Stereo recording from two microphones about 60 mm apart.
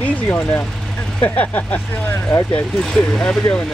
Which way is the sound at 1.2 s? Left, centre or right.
Left.